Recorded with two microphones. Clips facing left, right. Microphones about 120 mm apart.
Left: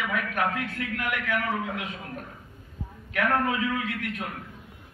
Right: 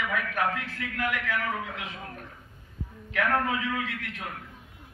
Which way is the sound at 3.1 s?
20° left (ahead or behind).